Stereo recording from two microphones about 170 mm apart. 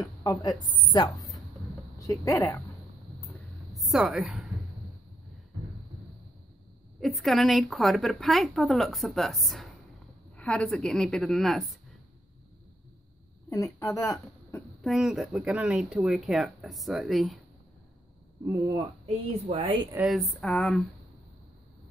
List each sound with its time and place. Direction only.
0.0 s a woman's voice: 20° left (ahead or behind)
3.7 s a woman's voice: centre (ahead or behind)
7.0 s a woman's voice: centre (ahead or behind)
13.7 s speech: 20° left (ahead or behind)
14.8 s a woman's voice: centre (ahead or behind)
19.0 s a woman's voice: 35° right (ahead or behind)
20.1 s a woman's voice: centre (ahead or behind)